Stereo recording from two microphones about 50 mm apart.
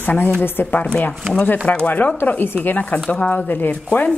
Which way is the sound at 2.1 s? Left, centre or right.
Left.